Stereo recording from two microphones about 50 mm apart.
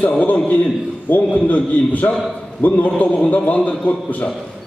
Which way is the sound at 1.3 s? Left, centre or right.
Left.